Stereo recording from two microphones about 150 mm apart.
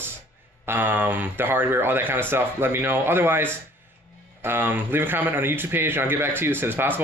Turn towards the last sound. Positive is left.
turn(degrees=-15)  # may be behind; listen again after turning